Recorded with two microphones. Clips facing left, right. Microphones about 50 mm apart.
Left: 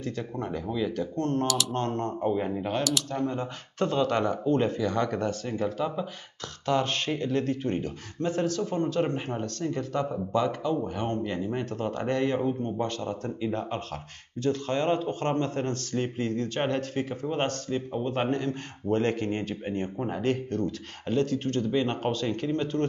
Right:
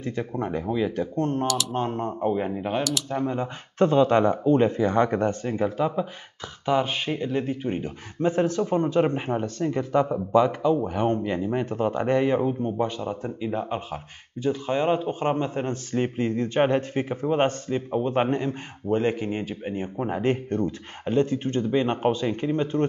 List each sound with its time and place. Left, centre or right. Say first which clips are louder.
0.0 s a man's voice: right 4 dB; right
1.5 s speech: right 2 dB; centre
1.8 s a man's voice: right 2 dB; centre
18.9 s speech: right 2 dB; centre
20.1 s a man's voice: right 4 dB; right